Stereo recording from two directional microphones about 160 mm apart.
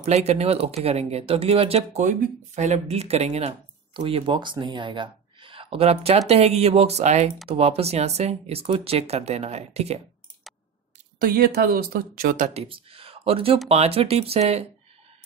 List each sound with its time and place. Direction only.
0.0 s speech: 40° right (ahead or behind)
11.1 s speech: 65° right (ahead or behind)
12.5 s speech: 35° right (ahead or behind)